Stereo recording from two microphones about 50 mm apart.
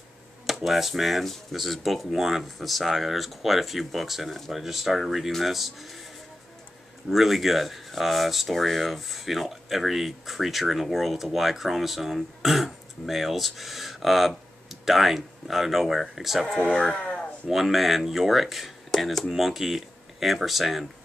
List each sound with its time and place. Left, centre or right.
0.7 s speech: centre
7.1 s speech: centre
16.5 s speech: left
17.5 s speech: centre